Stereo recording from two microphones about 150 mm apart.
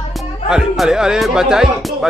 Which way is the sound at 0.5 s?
5° right (ahead or behind).